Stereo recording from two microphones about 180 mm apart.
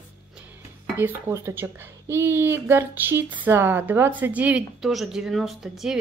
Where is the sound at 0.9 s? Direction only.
15° right (ahead or behind).